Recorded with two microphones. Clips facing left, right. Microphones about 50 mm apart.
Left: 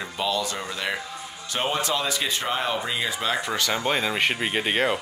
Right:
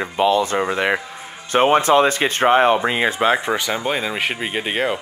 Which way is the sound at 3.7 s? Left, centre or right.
Centre.